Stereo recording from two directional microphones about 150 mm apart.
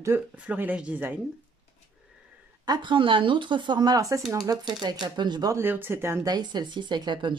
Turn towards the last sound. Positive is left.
turn(degrees=-30)  # may be behind; listen again after turning